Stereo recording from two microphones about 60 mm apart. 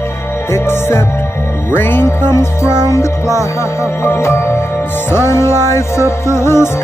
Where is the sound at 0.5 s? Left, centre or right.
Left.